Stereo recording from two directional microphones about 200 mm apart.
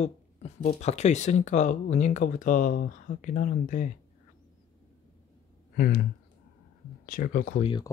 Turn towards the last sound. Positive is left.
turn(degrees=25)  # may be behind; listen again after turning